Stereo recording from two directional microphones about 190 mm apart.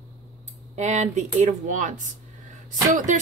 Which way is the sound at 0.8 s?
40° right (ahead or behind).